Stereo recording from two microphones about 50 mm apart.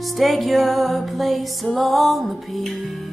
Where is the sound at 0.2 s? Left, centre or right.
Centre.